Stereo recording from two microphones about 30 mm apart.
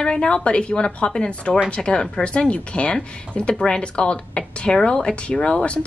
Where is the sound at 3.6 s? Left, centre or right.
Left.